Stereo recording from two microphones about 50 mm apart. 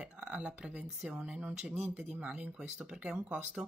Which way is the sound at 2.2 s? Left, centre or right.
Right.